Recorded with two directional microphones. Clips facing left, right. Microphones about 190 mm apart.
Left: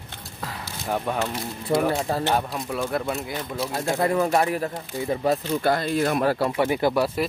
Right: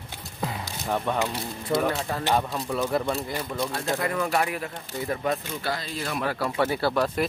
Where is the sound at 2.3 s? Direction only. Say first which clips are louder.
Even; centre (ahead or behind).